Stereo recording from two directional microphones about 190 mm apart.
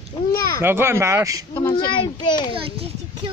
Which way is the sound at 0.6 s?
10° right (ahead or behind).